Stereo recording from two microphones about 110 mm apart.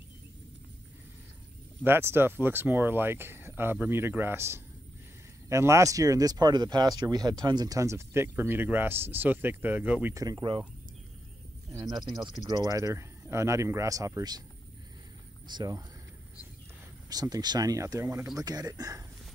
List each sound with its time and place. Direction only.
1.9 s speech: 20° right (ahead or behind)
10.1 s speech: 35° right (ahead or behind)
12.4 s speech: 35° right (ahead or behind)
15.4 s speech: 40° right (ahead or behind)
17.1 s speech: 35° right (ahead or behind)
18.4 s speech: 35° right (ahead or behind)